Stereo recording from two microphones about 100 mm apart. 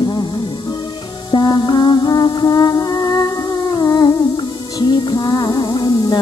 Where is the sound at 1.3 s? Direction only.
45° left (ahead or behind).